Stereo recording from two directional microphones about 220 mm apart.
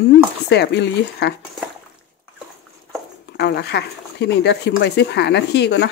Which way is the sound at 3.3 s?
50° left (ahead or behind).